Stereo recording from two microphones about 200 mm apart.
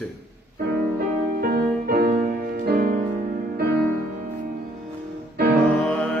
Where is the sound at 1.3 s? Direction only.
45° right (ahead or behind).